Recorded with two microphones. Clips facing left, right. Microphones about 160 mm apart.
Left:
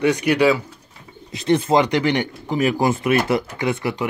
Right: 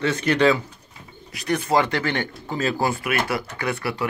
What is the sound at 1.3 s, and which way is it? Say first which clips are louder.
Speech: left 5 dB; 25° left (ahead or behind).